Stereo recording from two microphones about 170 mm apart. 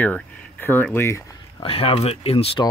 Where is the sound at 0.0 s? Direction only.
10° left (ahead or behind).